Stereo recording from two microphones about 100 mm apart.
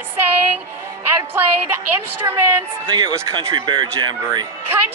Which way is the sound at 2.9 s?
45° right (ahead or behind).